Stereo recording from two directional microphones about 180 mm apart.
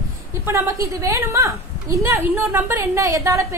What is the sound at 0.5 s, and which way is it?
A woman's voice, 15° right (ahead or behind).